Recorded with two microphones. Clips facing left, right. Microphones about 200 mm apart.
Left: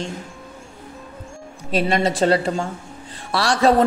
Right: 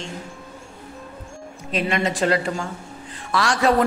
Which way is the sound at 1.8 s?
35° left (ahead or behind).